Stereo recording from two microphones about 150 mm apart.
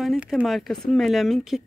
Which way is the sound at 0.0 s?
Centre (ahead or behind).